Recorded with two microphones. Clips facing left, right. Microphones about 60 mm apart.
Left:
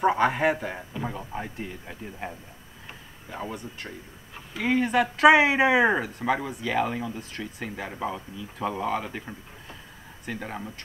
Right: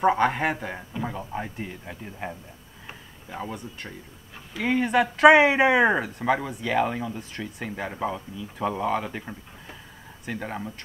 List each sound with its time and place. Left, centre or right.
0.0 s speech: centre
2.9 s a sound: centre
4.6 s speech: centre